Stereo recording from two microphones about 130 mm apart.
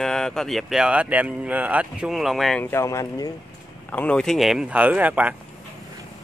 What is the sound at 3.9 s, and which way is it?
Speech, 10° left (ahead or behind).